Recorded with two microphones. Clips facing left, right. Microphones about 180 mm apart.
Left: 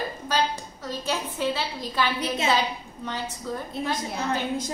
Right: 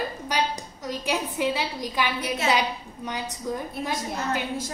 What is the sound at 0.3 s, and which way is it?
A woman's voice, 15° right (ahead or behind).